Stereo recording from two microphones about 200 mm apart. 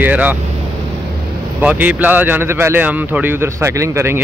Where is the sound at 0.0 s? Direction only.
10° right (ahead or behind).